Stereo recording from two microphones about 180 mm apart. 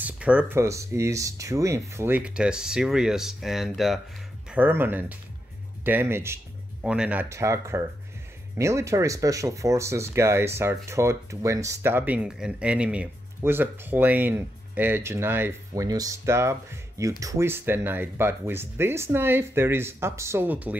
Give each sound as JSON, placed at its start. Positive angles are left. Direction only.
{"t": 0.0, "sound": "speech", "side_deg": -5}